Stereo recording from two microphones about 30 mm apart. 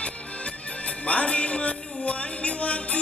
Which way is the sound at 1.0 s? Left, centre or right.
Left.